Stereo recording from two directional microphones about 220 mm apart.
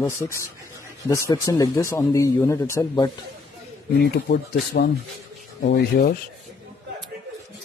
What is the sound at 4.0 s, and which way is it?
Speech, 45° left (ahead or behind).